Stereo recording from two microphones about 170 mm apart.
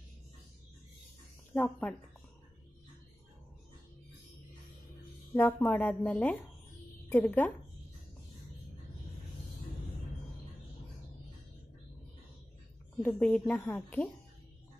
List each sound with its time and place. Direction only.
1.5 s a woman's voice: 5° left (ahead or behind)
5.3 s a woman's voice: 10° left (ahead or behind)
13.0 s a woman's voice: 10° left (ahead or behind)